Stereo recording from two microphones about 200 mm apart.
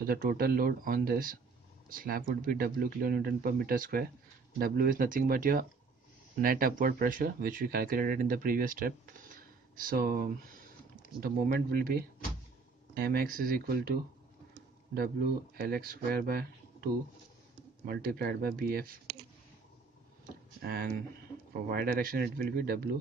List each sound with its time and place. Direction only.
0.0 s speech: 45° right (ahead or behind)
15.0 s speech: 50° right (ahead or behind)
20.6 s speech: 50° right (ahead or behind)